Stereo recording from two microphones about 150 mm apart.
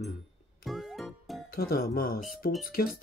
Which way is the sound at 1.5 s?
80° left.